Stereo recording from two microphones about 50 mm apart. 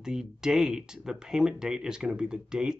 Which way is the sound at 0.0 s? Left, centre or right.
Centre.